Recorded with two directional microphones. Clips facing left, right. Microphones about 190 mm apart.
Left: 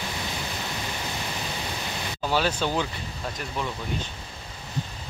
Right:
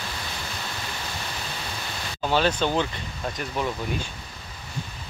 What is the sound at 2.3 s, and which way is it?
Speech, 10° left (ahead or behind).